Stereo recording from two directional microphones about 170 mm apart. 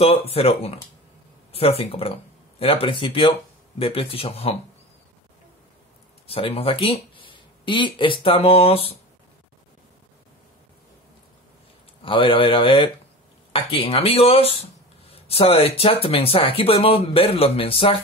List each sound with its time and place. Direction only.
0.0 s speech: 35° left (ahead or behind)
6.2 s speech: 35° left (ahead or behind)
12.0 s speech: 30° left (ahead or behind)